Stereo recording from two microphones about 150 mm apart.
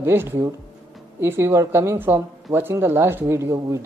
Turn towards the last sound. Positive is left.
turn(degrees=-15)  # may be behind; listen again after turning